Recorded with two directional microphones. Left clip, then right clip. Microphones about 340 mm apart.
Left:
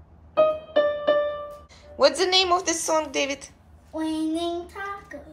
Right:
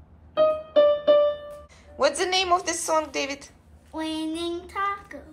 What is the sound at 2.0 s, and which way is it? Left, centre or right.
A woman's voice, centre.